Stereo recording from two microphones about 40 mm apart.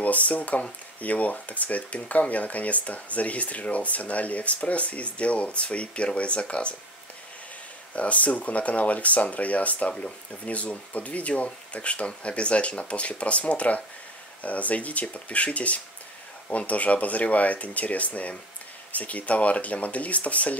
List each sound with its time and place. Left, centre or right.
0.0 s speech: left
7.9 s speech: left